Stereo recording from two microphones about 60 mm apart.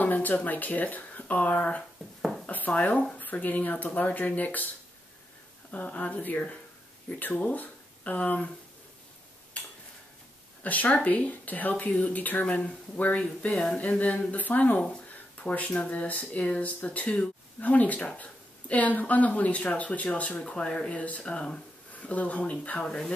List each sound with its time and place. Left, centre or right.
0.0 s speech: left
2.4 s dishes: left
3.2 s speech: left
5.7 s speech: left
10.6 s speech: left
13.5 s speech: centre
13.7 s speech: left